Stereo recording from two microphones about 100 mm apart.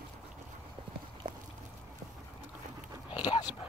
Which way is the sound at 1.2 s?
55° right (ahead or behind).